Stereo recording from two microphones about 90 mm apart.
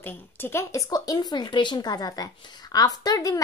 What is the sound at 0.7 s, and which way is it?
Speech, 40° left (ahead or behind).